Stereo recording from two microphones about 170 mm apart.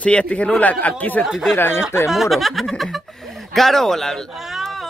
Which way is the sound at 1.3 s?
Centre (ahead or behind).